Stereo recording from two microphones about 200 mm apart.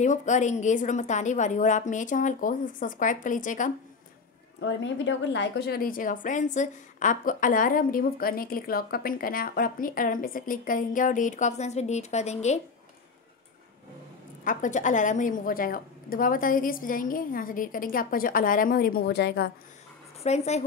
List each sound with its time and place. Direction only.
0.0 s a woman's voice: 35° left (ahead or behind)
4.6 s a woman's voice: 65° left (ahead or behind); by 12.5 s 35° left (ahead or behind)
14.4 s a woman's voice: 40° left (ahead or behind)
20.2 s a woman's voice: 35° left (ahead or behind)